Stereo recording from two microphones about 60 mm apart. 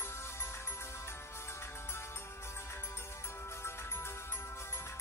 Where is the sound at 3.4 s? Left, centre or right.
Left.